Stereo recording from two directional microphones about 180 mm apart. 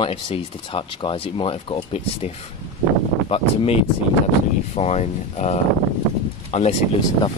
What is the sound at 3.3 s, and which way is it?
Speech, 30° left (ahead or behind).